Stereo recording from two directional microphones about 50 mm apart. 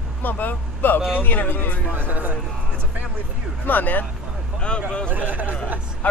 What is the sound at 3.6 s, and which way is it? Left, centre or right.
Speech, left.